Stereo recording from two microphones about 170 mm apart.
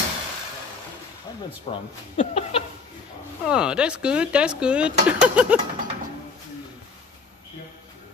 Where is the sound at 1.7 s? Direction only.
35° left (ahead or behind).